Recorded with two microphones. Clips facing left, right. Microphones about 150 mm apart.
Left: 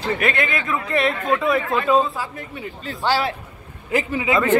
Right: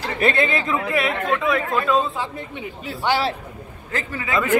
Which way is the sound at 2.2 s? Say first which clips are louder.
Right 1 dB; 25° right (ahead or behind).